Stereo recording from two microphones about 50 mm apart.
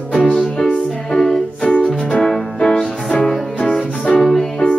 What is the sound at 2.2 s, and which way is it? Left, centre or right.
Piano, centre.